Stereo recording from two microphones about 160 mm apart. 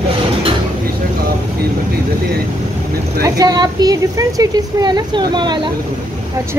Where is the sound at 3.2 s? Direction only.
20° right (ahead or behind).